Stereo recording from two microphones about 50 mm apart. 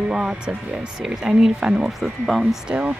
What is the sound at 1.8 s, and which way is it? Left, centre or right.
Speech, centre.